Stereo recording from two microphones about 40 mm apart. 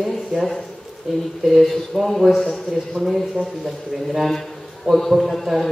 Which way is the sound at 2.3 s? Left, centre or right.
Centre.